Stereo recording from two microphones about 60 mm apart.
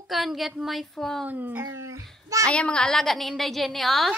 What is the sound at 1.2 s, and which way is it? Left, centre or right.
Speech, right.